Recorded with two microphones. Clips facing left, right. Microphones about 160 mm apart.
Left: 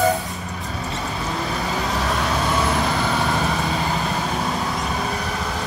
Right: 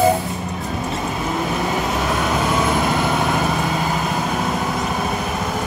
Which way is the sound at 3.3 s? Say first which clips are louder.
Right 2 dB; 5° right (ahead or behind).